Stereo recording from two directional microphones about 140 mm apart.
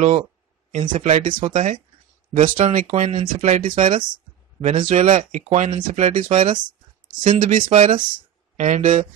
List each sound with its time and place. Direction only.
0.7 s speech: 60° right (ahead or behind)
3.3 s speech: 60° right (ahead or behind)
4.6 s speech: 50° right (ahead or behind)
6.3 s speech: 40° right (ahead or behind)
7.2 s speech: 60° right (ahead or behind)